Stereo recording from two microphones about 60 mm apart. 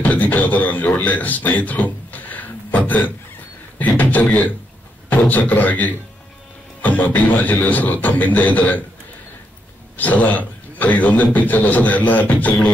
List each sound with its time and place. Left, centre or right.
0.0 s a man's voice: left
9.9 s a man's voice: left